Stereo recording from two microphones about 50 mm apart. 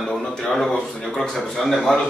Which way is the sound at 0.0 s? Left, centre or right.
Centre.